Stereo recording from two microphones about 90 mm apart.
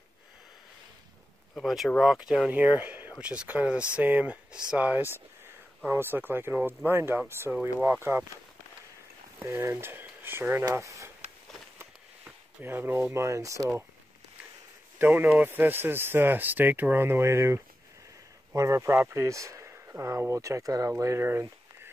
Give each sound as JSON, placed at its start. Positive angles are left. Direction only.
{"t": 1.5, "sound": "speech", "side_deg": 0}
{"t": 2.5, "sound": "speech", "side_deg": -15}
{"t": 9.4, "sound": "speech", "side_deg": -30}
{"t": 10.0, "sound": "a sound", "side_deg": -20}
{"t": 10.7, "sound": "speech", "side_deg": -35}
{"t": 12.6, "sound": "speech", "side_deg": -25}
{"t": 15.0, "sound": "speech", "side_deg": -20}